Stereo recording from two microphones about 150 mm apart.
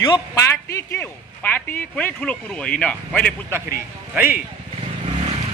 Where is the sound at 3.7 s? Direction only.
15° right (ahead or behind).